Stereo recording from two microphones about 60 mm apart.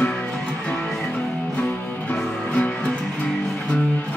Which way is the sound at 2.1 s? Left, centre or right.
Left.